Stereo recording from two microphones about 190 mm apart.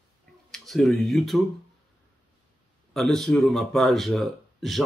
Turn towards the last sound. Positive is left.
turn(degrees=0)  # may be behind; listen again after turning